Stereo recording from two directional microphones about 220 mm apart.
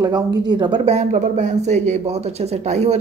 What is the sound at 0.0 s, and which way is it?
A woman's voice, 20° right (ahead or behind).